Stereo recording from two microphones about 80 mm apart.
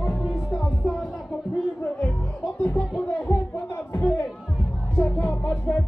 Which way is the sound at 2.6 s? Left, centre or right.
Left.